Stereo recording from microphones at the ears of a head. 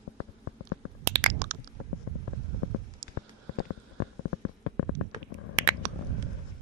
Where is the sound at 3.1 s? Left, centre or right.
Left.